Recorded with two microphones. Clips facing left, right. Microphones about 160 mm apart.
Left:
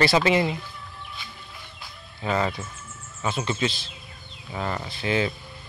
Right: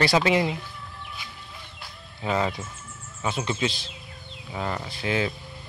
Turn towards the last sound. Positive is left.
turn(degrees=-5)  # may be behind; listen again after turning